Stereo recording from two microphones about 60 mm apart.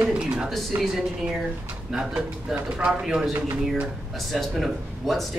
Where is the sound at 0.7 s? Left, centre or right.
Right.